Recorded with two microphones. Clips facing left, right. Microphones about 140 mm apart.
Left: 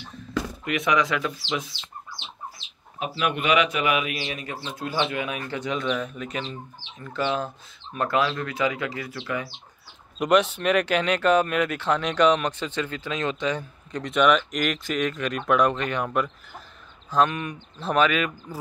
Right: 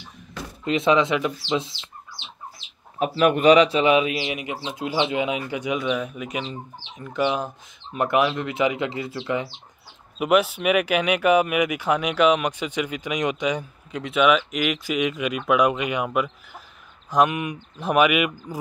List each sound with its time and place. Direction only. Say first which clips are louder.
0.7 s speech: right 5 dB; 25° right (ahead or behind)
3.0 s speech: right 8 dB; 45° right (ahead or behind); by 9.5 s 25° right (ahead or behind)
10.1 s speech: right 1 dB; 5° right (ahead or behind)